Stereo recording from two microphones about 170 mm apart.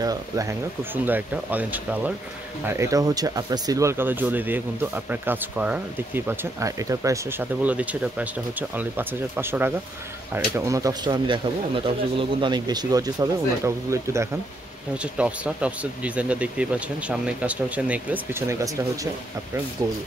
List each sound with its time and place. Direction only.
0.0 s speech: 20° right (ahead or behind)
19.8 s speech: 20° right (ahead or behind)